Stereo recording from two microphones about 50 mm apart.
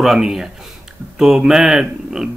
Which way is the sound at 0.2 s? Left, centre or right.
Centre.